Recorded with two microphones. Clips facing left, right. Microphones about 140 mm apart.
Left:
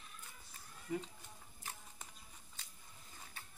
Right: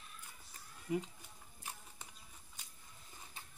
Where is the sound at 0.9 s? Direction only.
10° right (ahead or behind).